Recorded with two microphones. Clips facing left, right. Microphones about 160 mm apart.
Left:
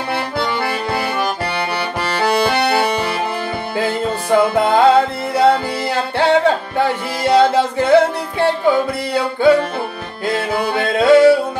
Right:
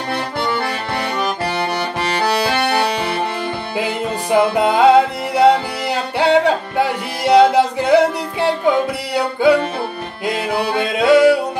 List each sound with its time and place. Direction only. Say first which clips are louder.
3.7 s music: left 3 dB; 15° right (ahead or behind)